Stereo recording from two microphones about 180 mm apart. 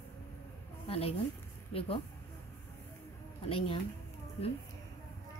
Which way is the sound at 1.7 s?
30° left (ahead or behind).